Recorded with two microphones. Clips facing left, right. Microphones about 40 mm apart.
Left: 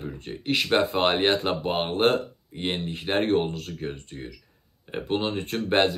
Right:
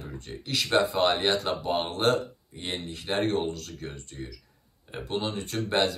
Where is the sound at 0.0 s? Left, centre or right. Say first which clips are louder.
Left 6 dB; left.